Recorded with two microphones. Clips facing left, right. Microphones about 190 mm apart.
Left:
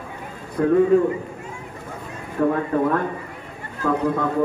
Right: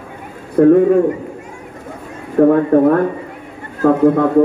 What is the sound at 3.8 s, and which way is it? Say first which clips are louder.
Speech: right 10 dB; 50° right (ahead or behind).